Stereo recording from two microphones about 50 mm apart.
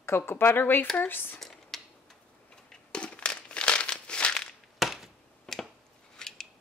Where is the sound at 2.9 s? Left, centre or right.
Centre.